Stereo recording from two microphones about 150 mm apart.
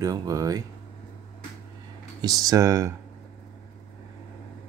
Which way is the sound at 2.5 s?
25° right (ahead or behind).